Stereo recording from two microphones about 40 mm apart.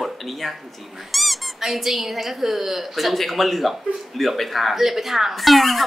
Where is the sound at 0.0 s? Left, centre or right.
Centre.